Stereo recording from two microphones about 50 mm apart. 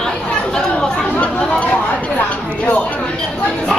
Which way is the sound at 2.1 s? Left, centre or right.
Left.